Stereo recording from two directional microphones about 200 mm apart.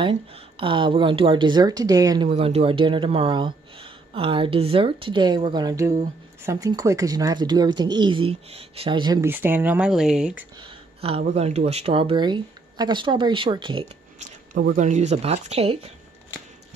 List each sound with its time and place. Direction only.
0.3 s speech: 25° right (ahead or behind); by 10.4 s 5° right (ahead or behind)
10.6 s speech: 25° right (ahead or behind)
14.5 s speech: 45° right (ahead or behind)